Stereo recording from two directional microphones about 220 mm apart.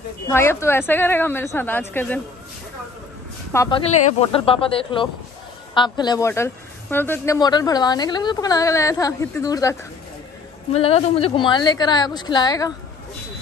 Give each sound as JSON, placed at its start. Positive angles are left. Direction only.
{"t": 0.3, "sound": "speech", "side_deg": 10}
{"t": 3.5, "sound": "a woman's voice", "side_deg": 20}
{"t": 10.7, "sound": "a woman's voice", "side_deg": 25}